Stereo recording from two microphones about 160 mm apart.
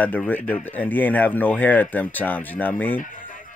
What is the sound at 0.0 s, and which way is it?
Speech, 10° left (ahead or behind).